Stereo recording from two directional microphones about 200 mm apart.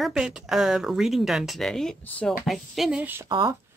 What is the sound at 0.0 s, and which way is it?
A woman's voice, centre (ahead or behind).